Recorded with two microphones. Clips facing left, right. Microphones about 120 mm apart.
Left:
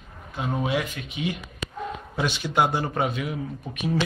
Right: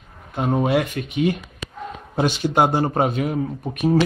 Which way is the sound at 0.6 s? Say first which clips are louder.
Right 6 dB; 55° right (ahead or behind).